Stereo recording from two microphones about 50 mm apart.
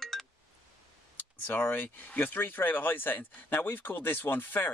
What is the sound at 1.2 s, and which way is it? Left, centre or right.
Speech, left.